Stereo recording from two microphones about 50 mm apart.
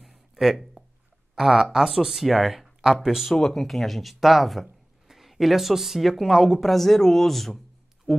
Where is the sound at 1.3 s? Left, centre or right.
Centre.